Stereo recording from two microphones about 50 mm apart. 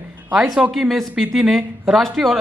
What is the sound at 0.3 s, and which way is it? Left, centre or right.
Speech, right.